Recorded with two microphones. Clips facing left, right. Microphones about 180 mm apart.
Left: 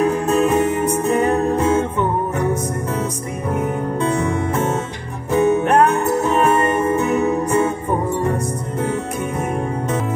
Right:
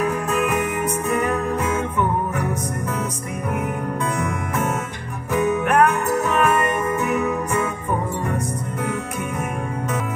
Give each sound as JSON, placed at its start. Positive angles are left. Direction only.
{"t": 0.0, "sound": "music", "side_deg": 30}